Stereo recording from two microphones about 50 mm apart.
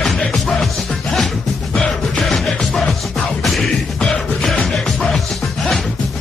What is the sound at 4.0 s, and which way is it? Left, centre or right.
Music, centre.